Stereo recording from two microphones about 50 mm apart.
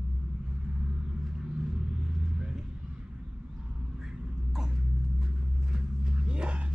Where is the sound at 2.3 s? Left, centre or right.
Centre.